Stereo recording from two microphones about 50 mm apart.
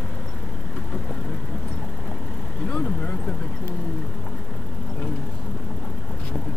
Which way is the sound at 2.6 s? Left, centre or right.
Left.